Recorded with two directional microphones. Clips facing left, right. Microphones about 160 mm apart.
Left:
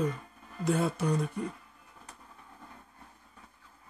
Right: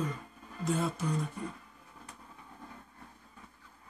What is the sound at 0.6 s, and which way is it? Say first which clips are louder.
Speech: left 4 dB; 65° left (ahead or behind).